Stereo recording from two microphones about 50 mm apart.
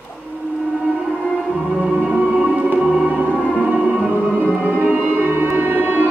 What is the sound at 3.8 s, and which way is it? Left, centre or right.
Music, centre.